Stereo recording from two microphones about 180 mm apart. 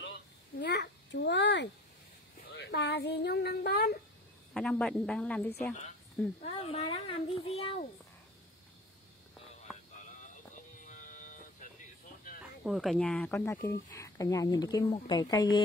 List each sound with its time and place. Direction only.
0.0 s a sound: 70° left (ahead or behind)
2.5 s speech: 70° left (ahead or behind)
4.6 s speech: 5° left (ahead or behind)
6.4 s a child's voice: 35° left (ahead or behind)
10.0 s music: 45° left (ahead or behind)
12.6 s speech: centre (ahead or behind)
13.7 s speech: 15° left (ahead or behind)